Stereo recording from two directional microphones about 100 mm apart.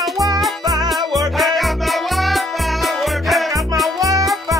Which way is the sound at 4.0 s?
35° right (ahead or behind).